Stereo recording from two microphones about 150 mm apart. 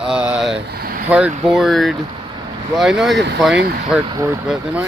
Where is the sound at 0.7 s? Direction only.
90° right.